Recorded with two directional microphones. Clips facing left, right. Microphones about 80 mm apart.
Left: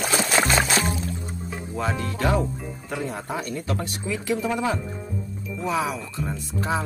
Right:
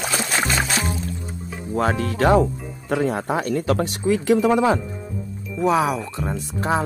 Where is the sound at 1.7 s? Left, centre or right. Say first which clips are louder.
Right 7 dB; right.